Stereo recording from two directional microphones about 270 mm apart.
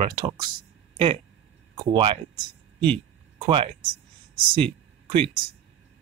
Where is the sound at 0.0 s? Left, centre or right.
Centre.